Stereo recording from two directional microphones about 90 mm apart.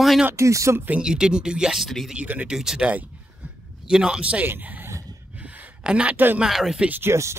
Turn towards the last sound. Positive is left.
turn(degrees=-20)  # may be behind; listen again after turning